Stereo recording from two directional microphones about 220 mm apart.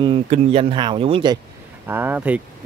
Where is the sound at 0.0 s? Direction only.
25° right (ahead or behind).